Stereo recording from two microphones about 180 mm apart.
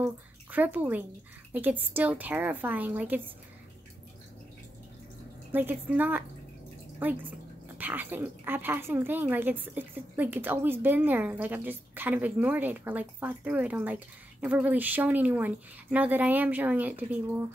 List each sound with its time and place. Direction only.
0.0 s speech: 10° right (ahead or behind)
5.5 s speech: 10° right (ahead or behind)